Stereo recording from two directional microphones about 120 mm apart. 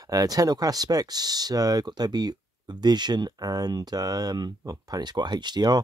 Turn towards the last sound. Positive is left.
turn(degrees=-35)  # may be behind; listen again after turning